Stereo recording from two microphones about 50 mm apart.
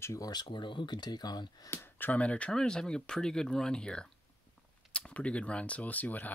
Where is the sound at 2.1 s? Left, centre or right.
Left.